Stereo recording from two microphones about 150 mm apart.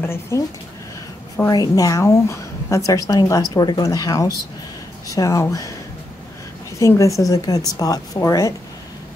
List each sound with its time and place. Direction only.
0.0 s a woman's voice: 15° left (ahead or behind)
6.8 s a woman's voice: 20° left (ahead or behind)